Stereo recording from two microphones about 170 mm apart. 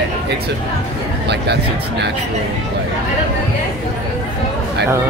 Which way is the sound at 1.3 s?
80° right.